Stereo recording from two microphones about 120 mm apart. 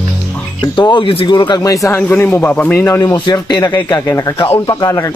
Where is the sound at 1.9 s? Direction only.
15° left (ahead or behind).